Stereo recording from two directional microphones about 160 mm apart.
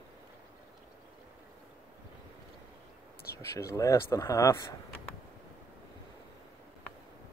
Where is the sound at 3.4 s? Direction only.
20° left (ahead or behind).